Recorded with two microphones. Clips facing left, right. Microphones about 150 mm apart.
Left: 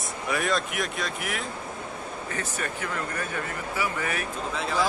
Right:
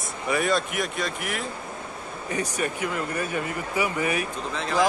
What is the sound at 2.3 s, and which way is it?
Speech, 15° right (ahead or behind).